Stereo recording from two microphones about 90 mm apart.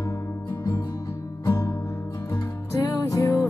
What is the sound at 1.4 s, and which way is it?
Music, 25° left (ahead or behind).